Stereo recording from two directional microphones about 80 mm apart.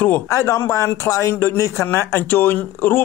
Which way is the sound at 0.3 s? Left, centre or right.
Left.